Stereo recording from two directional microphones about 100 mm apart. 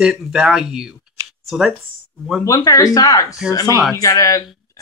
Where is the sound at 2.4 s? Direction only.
35° left (ahead or behind).